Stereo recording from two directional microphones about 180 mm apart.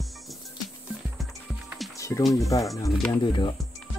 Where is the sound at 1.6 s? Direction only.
Centre (ahead or behind).